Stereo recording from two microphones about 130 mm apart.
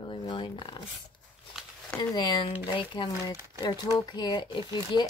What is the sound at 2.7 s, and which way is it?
Speech, 40° left (ahead or behind).